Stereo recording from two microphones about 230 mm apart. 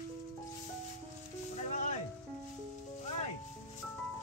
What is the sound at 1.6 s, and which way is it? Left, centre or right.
Music, left.